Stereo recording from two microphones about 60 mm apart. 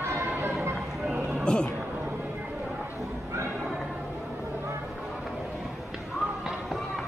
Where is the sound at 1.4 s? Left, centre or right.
Centre.